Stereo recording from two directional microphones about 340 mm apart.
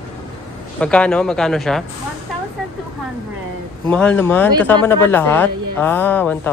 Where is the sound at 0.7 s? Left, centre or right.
Centre.